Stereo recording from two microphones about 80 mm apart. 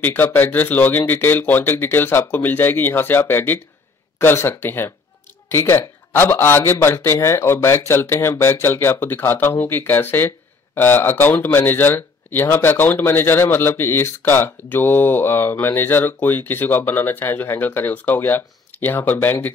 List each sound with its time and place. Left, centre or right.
0.0 s a man's voice: left